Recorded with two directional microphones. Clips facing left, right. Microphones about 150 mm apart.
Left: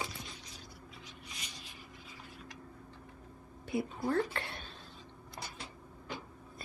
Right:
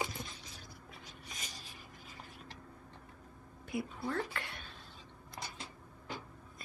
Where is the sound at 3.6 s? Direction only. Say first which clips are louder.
Left 4 dB; 25° left (ahead or behind).